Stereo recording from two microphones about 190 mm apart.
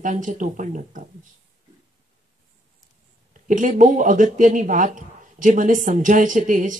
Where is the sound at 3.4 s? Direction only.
40° right (ahead or behind).